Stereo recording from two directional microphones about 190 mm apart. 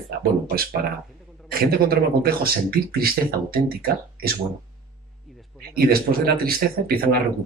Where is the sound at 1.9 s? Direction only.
50° right (ahead or behind).